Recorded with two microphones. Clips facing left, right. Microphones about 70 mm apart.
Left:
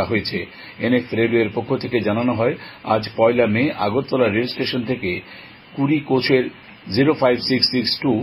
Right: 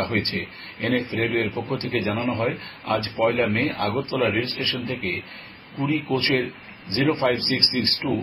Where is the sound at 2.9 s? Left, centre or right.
Left.